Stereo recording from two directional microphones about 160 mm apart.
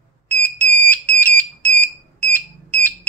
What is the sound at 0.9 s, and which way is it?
Smoke detector, 10° left (ahead or behind).